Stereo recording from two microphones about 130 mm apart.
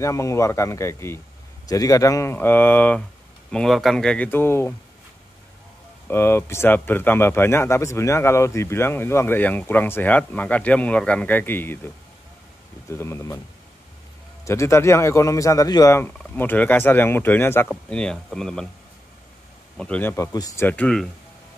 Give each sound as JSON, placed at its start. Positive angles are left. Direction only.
{"t": 0.0, "sound": "a man's voice", "side_deg": 25}
{"t": 3.5, "sound": "speech", "side_deg": 0}
{"t": 6.0, "sound": "speech", "side_deg": 15}
{"t": 12.9, "sound": "a man's voice", "side_deg": 20}
{"t": 14.4, "sound": "a man's voice", "side_deg": 20}
{"t": 17.6, "sound": "speech", "side_deg": 5}
{"t": 19.8, "sound": "speech", "side_deg": 10}
{"t": 20.3, "sound": "a man's voice", "side_deg": 25}
{"t": 20.6, "sound": "speech", "side_deg": 10}